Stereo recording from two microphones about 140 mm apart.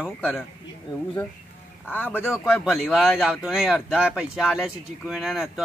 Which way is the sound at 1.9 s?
15° left (ahead or behind).